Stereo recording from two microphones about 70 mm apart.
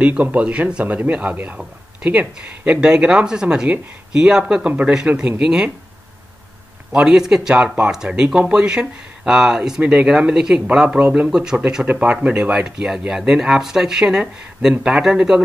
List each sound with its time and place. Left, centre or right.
0.0 s speech: right
6.9 s speech: centre
9.8 s speech: centre
10.0 s speech: centre
12.5 s speech: centre